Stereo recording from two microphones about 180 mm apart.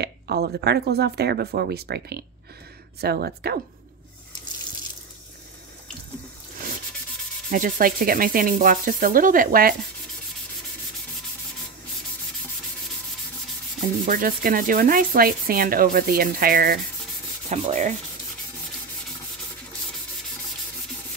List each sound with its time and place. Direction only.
0.0 s speech: 65° right (ahead or behind)
7.5 s rub: 50° right (ahead or behind)
14.0 s rub: 50° right (ahead or behind)
17.5 s sanding: 40° right (ahead or behind)